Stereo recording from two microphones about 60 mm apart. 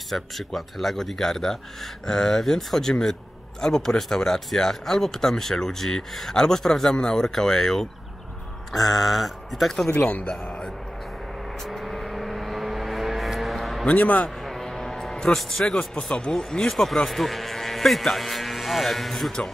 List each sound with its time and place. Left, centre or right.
0.1 s speech: centre
9.8 s a man's voice: left
11.6 s vehicle: centre
13.8 s a man's voice: left
14.4 s music: centre
15.5 s speech: centre